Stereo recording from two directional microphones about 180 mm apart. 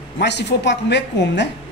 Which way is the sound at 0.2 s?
70° left (ahead or behind).